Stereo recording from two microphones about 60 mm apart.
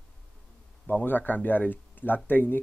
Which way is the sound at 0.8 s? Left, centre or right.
Left.